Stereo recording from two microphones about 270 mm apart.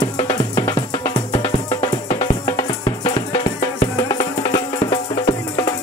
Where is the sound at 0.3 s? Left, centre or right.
Centre.